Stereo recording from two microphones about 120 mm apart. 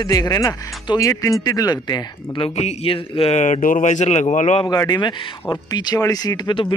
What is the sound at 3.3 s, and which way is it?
Speech, 85° left.